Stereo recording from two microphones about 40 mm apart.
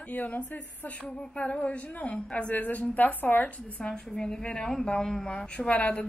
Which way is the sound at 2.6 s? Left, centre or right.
Left.